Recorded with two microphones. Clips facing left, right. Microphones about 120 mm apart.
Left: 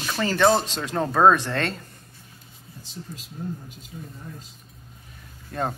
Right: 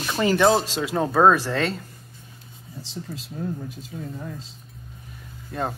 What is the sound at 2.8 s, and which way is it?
Speech, 90° right.